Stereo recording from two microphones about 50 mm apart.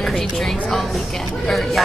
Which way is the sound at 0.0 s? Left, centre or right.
Centre.